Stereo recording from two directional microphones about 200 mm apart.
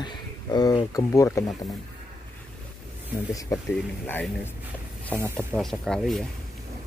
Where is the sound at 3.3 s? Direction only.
15° left (ahead or behind).